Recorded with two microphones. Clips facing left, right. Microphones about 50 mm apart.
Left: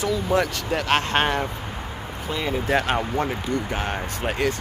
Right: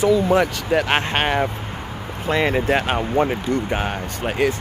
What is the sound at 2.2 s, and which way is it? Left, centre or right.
Speech, right.